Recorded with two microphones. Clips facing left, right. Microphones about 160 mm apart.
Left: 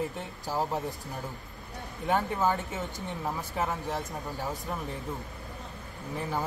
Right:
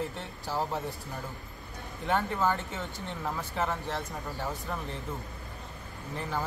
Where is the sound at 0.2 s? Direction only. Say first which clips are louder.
Left 1 dB; 15° left (ahead or behind).